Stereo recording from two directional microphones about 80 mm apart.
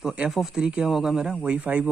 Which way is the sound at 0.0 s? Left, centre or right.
Centre.